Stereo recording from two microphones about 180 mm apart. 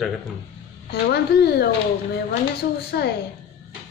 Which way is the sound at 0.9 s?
65° left (ahead or behind).